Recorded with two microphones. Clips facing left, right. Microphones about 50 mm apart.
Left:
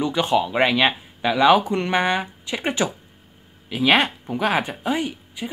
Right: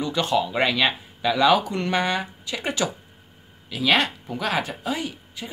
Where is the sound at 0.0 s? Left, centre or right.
Left.